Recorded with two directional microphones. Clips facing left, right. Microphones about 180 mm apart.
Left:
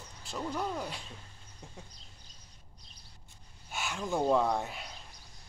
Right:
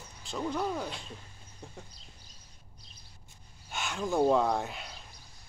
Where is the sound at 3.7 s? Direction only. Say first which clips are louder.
Right 1 dB; 5° left (ahead or behind).